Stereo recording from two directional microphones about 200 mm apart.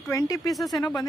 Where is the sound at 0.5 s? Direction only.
Centre (ahead or behind).